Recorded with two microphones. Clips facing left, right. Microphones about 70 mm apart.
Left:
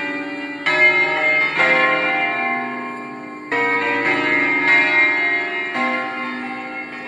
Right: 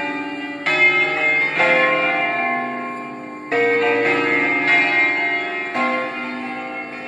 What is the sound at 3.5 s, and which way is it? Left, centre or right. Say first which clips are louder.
Music: right 3 dB; left.